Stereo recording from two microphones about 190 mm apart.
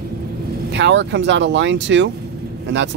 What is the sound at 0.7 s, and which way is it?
Speech, 70° right (ahead or behind).